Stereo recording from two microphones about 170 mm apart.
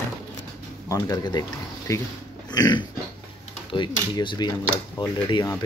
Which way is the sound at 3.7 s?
30° left (ahead or behind).